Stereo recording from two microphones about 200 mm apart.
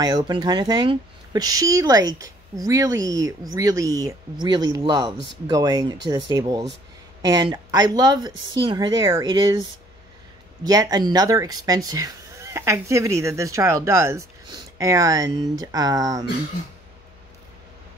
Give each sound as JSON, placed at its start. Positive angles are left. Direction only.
{"t": 0.0, "sound": "a woman's voice", "side_deg": -20}